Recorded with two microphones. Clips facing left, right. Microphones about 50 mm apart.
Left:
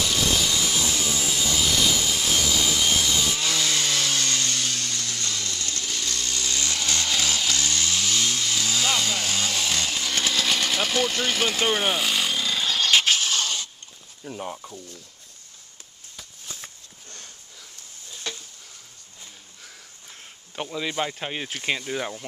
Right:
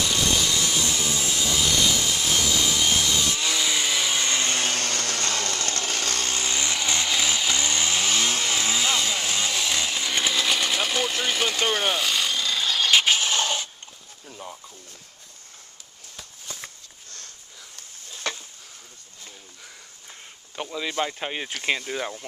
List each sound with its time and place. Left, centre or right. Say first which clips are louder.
0.0 s a sound: even; centre; by 6.3 s right
6.3 s chainsaw: right 2 dB; right
8.7 s chainsaw: even; centre
14.4 s speech: left 5 dB; left
18.3 s a sound: right 4 dB; right
20.7 s speech: even; centre